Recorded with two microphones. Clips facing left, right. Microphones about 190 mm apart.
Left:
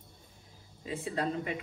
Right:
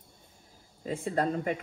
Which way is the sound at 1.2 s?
45° right (ahead or behind).